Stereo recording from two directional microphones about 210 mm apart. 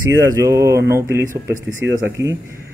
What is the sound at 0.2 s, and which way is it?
Speech, 15° right (ahead or behind).